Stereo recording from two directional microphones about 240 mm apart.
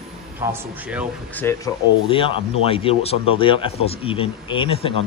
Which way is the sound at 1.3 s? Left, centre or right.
Centre.